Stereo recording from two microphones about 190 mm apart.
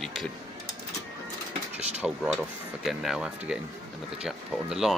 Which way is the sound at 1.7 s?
5° right (ahead or behind).